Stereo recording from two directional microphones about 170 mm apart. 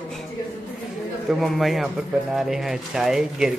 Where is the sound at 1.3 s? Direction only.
Centre (ahead or behind).